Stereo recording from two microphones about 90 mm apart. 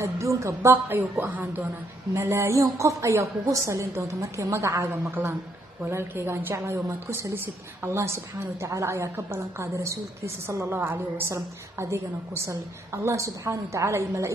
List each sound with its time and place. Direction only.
0.0 s a woman's voice: 35° right (ahead or behind)